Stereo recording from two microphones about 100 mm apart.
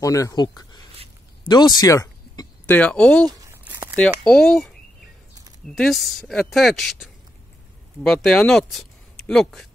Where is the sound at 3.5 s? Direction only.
25° right (ahead or behind).